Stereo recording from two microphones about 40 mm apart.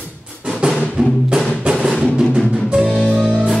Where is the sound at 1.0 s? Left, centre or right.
Right.